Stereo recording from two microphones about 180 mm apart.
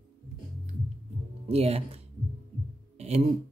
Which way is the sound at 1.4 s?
35° right (ahead or behind).